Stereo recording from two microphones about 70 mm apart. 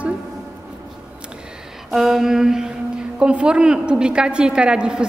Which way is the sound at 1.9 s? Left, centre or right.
Centre.